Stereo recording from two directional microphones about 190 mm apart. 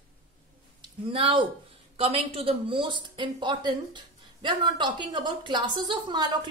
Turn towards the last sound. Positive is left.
turn(degrees=-25)  # may be behind; listen again after turning